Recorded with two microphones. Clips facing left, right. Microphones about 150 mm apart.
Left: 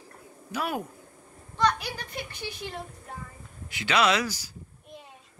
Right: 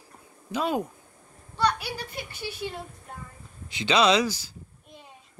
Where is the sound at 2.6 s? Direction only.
20° right (ahead or behind).